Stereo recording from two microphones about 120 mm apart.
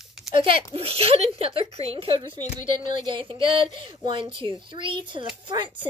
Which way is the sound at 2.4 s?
90° left.